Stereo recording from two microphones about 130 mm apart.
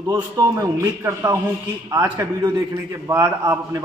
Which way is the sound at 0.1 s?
25° right (ahead or behind).